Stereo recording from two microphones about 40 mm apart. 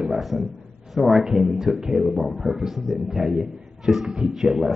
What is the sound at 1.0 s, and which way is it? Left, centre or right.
Speech, centre.